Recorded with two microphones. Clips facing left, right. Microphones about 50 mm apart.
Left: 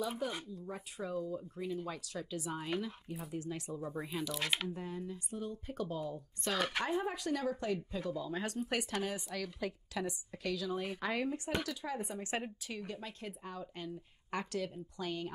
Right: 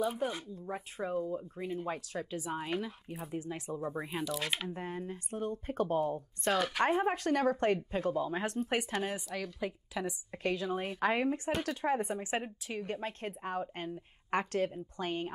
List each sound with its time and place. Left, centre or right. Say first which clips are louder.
0.2 s speech: right 3 dB; right
2.3 s speech: right 2 dB; right
4.3 s speech: left 1 dB; centre
4.6 s a woman's voice: right 2 dB; right; by 10.1 s centre
10.3 s speech: right 5 dB; right
12.2 s speech: right 3 dB; right
12.8 s speech: right 6 dB; right